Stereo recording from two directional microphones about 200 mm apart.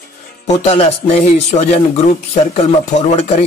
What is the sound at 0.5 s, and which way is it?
Speech, 30° left (ahead or behind).